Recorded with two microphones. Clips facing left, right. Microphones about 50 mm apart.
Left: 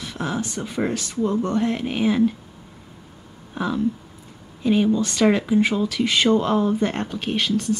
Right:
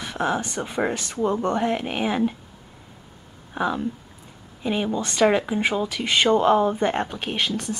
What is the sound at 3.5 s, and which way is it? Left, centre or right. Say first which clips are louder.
Speech: left 1 dB; centre.